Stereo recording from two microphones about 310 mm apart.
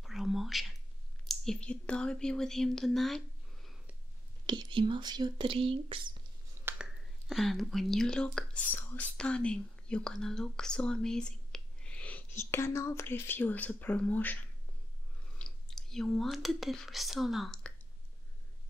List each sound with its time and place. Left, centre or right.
0.0 s whispering: centre
1.2 s speech: centre
4.5 s speech: centre
6.6 s speech: centre